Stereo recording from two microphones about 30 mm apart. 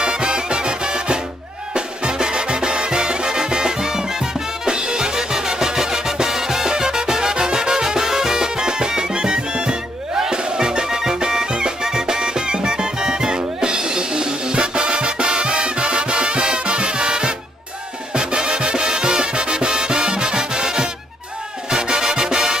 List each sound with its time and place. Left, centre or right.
0.0 s music: right